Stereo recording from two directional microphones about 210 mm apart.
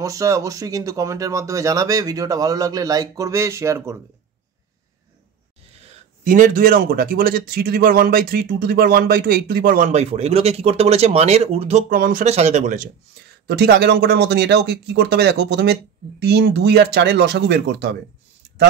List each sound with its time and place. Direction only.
0.0 s speech: 15° right (ahead or behind)
5.9 s a man's voice: 40° right (ahead or behind)
11.9 s speech: 45° right (ahead or behind)
13.5 s a man's voice: 50° right (ahead or behind)